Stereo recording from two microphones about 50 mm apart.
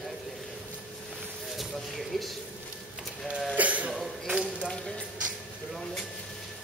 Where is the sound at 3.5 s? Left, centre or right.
Right.